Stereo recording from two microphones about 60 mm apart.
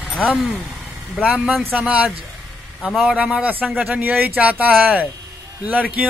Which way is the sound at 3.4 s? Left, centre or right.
Right.